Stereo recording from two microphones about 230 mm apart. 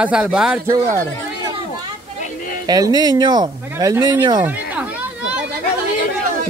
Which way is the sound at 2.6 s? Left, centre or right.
Centre.